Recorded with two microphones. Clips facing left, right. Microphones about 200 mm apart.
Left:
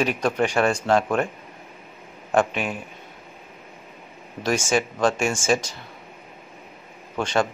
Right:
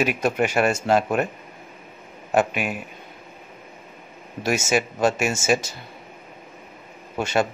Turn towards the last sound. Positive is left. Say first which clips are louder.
# right 1 dB
turn(degrees=-10)  # may be behind; listen again after turning